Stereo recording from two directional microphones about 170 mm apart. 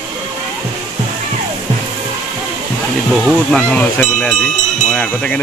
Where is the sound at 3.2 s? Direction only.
5° left (ahead or behind).